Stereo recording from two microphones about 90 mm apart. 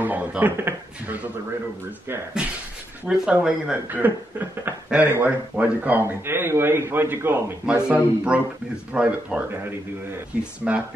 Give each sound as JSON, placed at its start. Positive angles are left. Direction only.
{"t": 0.0, "sound": "speech", "side_deg": -20}
{"t": 3.1, "sound": "speech", "side_deg": -15}
{"t": 3.9, "sound": "speech", "side_deg": -20}
{"t": 7.6, "sound": "speech", "side_deg": -10}
{"t": 10.6, "sound": "speech", "side_deg": -10}